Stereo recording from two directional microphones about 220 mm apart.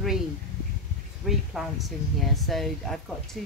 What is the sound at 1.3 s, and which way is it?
Speech, centre (ahead or behind).